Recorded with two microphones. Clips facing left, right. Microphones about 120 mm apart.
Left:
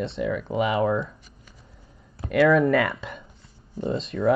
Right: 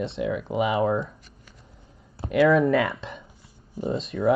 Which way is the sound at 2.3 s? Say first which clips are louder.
Even; 5° right (ahead or behind).